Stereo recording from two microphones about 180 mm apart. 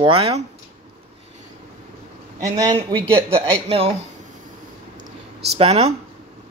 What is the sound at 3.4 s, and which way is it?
Speech, 30° right (ahead or behind).